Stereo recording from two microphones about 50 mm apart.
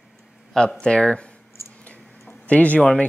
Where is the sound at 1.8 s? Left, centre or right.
Left.